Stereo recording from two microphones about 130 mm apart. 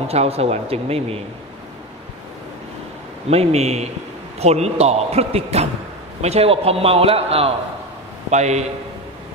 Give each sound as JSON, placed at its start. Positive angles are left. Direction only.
{"t": 0.1, "sound": "a man's voice", "side_deg": -50}
{"t": 3.3, "sound": "a man's voice", "side_deg": -55}
{"t": 8.3, "sound": "speech", "side_deg": -60}